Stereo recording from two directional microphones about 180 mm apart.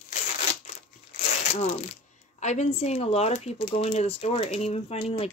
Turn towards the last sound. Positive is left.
turn(degrees=30)  # may be behind; listen again after turning